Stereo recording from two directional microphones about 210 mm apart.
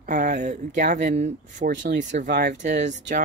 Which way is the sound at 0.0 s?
40° right (ahead or behind).